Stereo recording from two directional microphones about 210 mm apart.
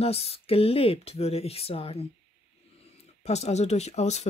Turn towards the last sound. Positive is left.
turn(degrees=30)  # may be behind; listen again after turning